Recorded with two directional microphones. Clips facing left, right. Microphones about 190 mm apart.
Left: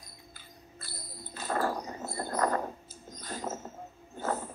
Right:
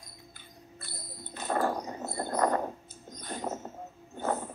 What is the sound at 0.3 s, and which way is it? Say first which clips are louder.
Cricket: right 1 dB; 20° right (ahead or behind).